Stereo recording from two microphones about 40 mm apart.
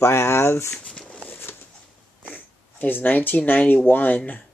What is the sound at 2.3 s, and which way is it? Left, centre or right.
Speech, left.